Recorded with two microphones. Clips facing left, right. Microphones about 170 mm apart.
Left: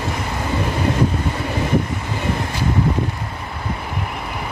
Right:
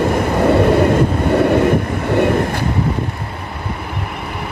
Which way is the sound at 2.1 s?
65° right (ahead or behind).